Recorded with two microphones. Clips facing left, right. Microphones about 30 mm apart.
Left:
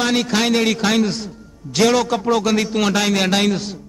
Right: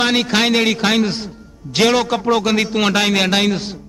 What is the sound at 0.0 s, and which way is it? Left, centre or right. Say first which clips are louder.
A man's voice: right 2 dB; right.